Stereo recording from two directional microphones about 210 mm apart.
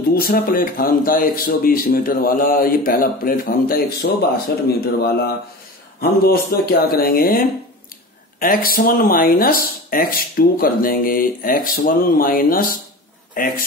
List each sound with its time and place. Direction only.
0.1 s speech: 45° left (ahead or behind)